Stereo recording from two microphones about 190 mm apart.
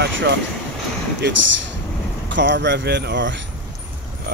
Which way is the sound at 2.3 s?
65° right (ahead or behind).